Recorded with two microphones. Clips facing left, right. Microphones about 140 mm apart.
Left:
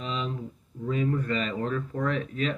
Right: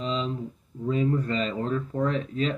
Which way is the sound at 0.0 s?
30° right (ahead or behind).